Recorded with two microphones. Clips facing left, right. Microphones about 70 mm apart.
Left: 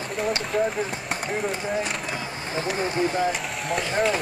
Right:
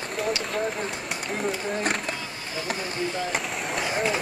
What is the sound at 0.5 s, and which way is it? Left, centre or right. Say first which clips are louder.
Speech: left 6 dB; centre.